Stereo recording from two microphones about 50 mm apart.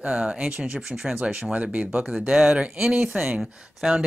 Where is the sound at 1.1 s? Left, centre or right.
Right.